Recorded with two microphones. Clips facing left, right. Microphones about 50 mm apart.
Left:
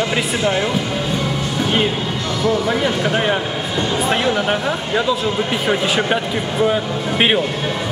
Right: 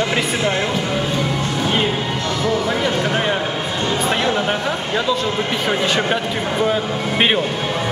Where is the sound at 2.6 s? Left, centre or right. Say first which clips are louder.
Left 1 dB; centre.